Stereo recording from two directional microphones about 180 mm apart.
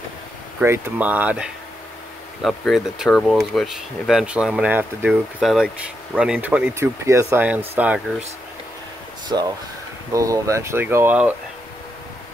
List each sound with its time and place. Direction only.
0.6 s speech: 10° right (ahead or behind)
9.3 s speech: 20° right (ahead or behind)